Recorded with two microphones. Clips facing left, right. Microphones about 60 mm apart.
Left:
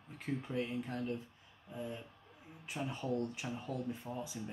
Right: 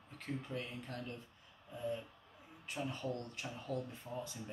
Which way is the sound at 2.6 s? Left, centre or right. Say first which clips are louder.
Left 1 dB; centre.